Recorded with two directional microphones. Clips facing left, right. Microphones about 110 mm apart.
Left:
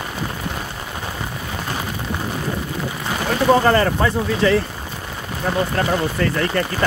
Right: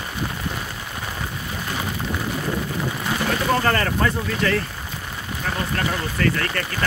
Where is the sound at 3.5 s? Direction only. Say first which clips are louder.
Left 7 dB; 20° left (ahead or behind).